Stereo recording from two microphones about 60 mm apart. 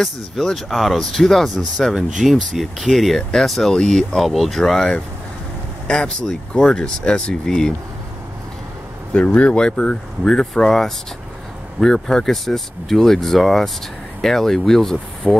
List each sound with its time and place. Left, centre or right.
0.0 s speech: centre
3.2 s speech: centre
9.1 s speech: left; by 15.3 s centre